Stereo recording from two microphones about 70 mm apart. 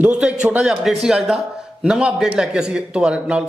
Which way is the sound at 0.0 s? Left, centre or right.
Centre.